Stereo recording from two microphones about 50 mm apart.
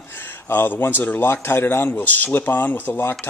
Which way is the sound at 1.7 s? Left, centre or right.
Left.